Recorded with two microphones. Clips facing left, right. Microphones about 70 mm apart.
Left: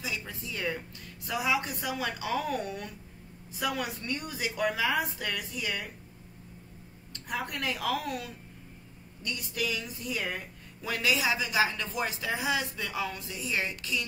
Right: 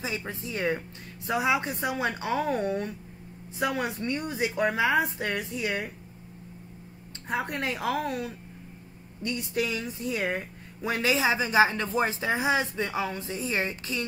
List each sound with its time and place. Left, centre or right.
0.0 s a woman's voice: right
7.2 s speech: right